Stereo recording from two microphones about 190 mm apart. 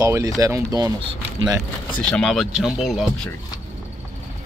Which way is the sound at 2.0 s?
5° left (ahead or behind).